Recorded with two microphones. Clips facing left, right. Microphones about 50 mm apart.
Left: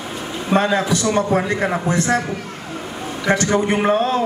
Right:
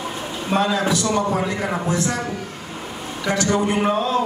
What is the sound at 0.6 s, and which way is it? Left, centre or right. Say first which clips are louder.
A man's voice: left 1 dB; left.